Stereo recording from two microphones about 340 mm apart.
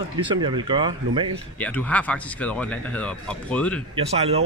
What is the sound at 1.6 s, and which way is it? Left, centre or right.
Speech, centre.